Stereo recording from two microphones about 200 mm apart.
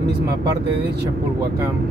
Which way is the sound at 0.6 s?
55° right (ahead or behind).